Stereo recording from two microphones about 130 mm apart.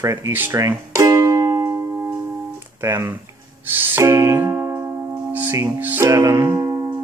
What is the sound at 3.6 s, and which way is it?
Music, 15° right (ahead or behind).